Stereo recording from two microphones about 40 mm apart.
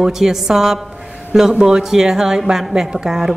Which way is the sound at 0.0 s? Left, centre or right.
Centre.